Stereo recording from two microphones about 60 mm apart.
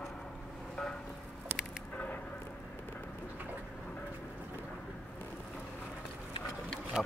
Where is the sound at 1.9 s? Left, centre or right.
Left.